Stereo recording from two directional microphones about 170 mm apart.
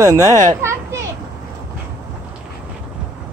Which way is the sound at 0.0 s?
20° right (ahead or behind).